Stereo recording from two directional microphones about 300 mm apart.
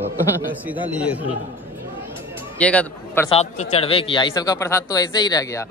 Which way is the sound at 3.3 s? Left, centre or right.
Left.